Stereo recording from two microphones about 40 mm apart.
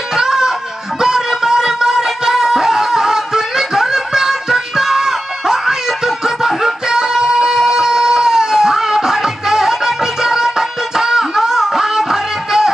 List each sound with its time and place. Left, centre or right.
0.1 s music: centre